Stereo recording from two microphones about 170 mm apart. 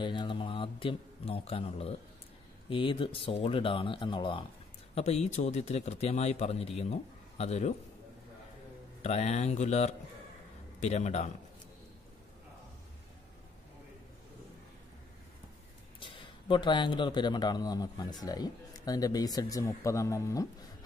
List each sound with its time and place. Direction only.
0.0 s speech: 30° left (ahead or behind)
4.9 s speech: 40° left (ahead or behind)
9.0 s a man's voice: 40° left (ahead or behind)
16.0 s speech: 30° left (ahead or behind)